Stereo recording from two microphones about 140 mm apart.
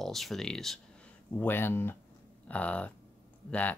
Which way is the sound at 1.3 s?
15° left (ahead or behind).